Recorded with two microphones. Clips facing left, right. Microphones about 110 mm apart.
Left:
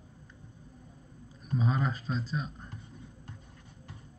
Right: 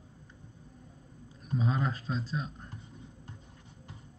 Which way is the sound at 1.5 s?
Centre (ahead or behind).